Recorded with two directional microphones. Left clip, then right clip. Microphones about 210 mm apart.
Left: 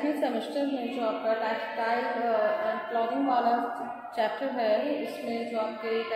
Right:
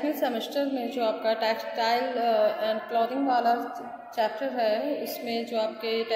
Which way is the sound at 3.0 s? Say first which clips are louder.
Right 2 dB; 20° right (ahead or behind).